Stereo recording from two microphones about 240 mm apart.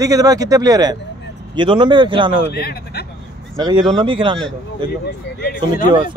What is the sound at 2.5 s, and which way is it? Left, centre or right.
Speech, left.